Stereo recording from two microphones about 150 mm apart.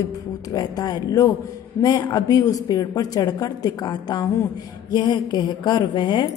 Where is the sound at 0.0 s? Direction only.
25° left (ahead or behind).